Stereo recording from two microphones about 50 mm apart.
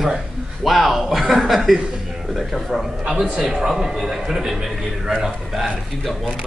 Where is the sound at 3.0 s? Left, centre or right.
Right.